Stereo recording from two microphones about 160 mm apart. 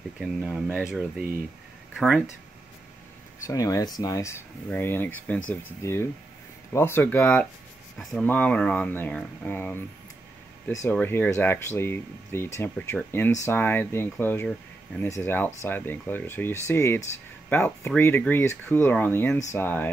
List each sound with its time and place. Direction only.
0.2 s speech: 5° right (ahead or behind)
3.4 s speech: 20° left (ahead or behind)